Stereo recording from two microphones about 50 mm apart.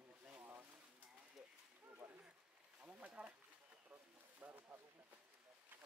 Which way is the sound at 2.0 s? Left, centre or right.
Centre.